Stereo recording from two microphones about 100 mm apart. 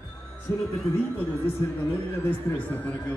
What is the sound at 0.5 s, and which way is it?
Speech, 35° left (ahead or behind).